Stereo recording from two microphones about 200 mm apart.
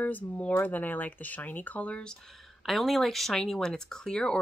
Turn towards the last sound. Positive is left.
turn(degrees=5)  # may be behind; listen again after turning